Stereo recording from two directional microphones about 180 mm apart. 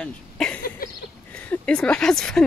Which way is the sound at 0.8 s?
55° left (ahead or behind).